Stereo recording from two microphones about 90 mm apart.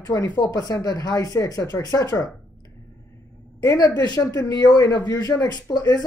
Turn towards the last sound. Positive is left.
turn(degrees=45)  # may be behind; listen again after turning